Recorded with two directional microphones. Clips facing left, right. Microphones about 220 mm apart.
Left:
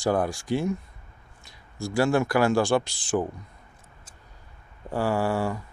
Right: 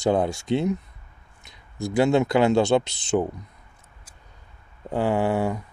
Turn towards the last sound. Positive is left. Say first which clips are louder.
# right 3 dB
turn(degrees=-20)  # may be behind; listen again after turning